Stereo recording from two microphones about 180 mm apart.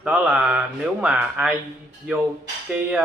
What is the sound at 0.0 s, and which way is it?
Speech, 5° right (ahead or behind).